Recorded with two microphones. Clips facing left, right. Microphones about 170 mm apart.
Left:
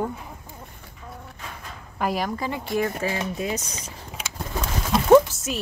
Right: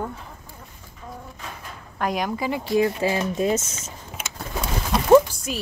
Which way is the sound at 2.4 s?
15° right (ahead or behind).